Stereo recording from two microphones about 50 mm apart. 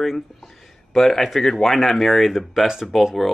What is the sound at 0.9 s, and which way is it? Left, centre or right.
Speech, centre.